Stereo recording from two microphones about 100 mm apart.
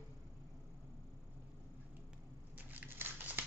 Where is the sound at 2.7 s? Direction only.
20° right (ahead or behind).